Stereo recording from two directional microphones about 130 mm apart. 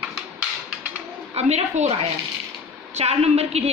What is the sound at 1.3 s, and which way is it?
Speech, 60° right (ahead or behind).